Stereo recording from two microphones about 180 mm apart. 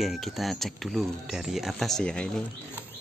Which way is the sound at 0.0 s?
Centre (ahead or behind).